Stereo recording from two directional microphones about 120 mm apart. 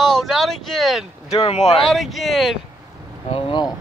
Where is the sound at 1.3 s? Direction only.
60° left (ahead or behind).